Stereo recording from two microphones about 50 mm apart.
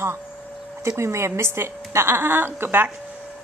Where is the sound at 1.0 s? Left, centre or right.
Right.